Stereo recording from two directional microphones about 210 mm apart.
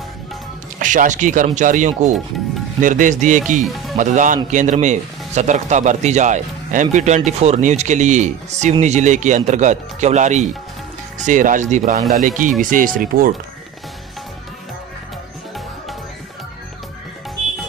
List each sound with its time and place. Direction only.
0.7 s speech: 35° right (ahead or behind)